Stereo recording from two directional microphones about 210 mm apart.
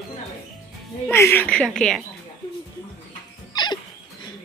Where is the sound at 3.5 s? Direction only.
20° left (ahead or behind).